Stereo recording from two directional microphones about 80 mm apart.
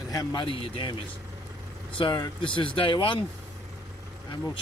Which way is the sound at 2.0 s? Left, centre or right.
Left.